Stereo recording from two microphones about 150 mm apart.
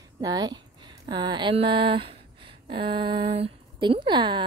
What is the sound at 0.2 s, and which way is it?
A woman's voice, 25° right (ahead or behind).